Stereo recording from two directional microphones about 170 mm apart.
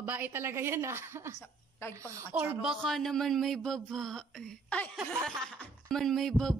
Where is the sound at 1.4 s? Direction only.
15° left (ahead or behind).